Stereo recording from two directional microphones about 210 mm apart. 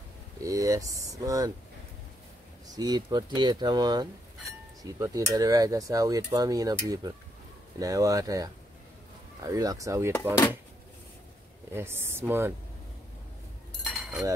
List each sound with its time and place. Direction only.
0.4 s speech: 15° right (ahead or behind)
2.7 s speech: 20° right (ahead or behind)
11.7 s speech: 10° right (ahead or behind)
13.8 s cutlery: centre (ahead or behind)